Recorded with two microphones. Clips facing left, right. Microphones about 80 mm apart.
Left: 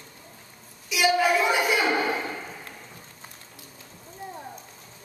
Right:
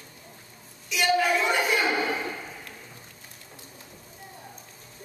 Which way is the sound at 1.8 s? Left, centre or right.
Centre.